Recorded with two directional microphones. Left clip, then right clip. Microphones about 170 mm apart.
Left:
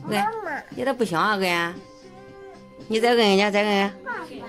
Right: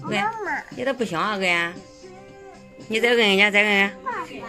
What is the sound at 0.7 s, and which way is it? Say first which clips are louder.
Speech: left 3 dB; 20° left (ahead or behind).